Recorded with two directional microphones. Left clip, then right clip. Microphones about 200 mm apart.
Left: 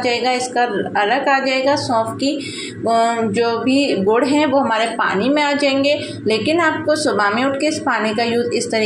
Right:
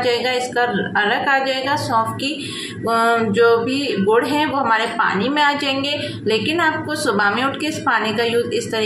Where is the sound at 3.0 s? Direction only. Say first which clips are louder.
Right 4 dB; 10° left (ahead or behind).